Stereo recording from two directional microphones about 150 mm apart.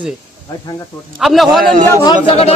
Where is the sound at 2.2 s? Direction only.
45° left (ahead or behind).